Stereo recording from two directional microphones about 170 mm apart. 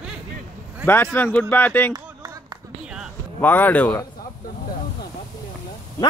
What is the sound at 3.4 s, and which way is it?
Speech, 10° left (ahead or behind).